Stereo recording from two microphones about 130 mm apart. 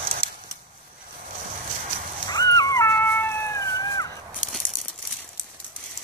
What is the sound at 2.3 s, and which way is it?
Dog, 30° left (ahead or behind).